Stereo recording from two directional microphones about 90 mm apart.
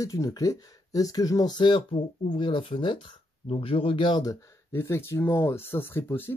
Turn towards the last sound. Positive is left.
turn(degrees=25)  # may be behind; listen again after turning